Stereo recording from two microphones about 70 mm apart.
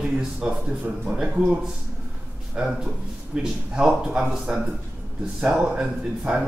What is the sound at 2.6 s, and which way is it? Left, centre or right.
A man's voice, centre.